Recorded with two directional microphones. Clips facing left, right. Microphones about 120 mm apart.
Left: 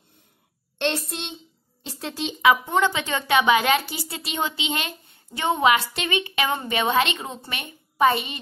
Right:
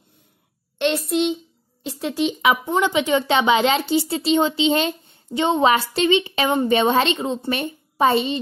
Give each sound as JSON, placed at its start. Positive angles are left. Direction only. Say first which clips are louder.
{"t": 1.8, "sound": "speech", "louder": "right 8 dB", "side_deg": -15}
{"t": 3.3, "sound": "speech", "louder": "left 3 dB", "side_deg": -25}